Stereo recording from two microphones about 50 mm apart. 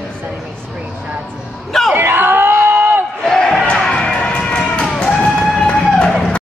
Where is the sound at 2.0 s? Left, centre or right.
Right.